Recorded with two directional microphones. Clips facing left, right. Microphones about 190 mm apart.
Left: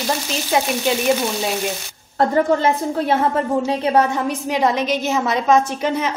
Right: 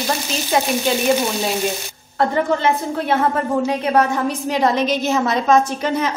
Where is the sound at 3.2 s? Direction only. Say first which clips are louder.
Even; 30° left (ahead or behind).